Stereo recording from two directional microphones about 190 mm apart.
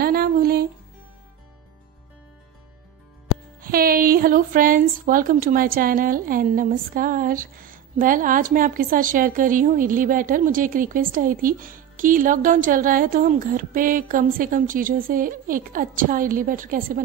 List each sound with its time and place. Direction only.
0.0 s music: 55° right (ahead or behind)
3.6 s speech: 50° right (ahead or behind)